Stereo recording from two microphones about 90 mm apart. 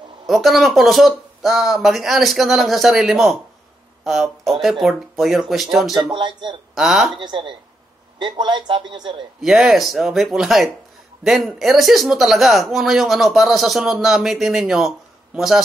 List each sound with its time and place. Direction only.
0.3 s speech: centre (ahead or behind)
6.0 s speech: 60° right (ahead or behind)
6.7 s speech: 5° right (ahead or behind)
7.2 s speech: 65° right (ahead or behind)
9.4 s speech: 5° right (ahead or behind)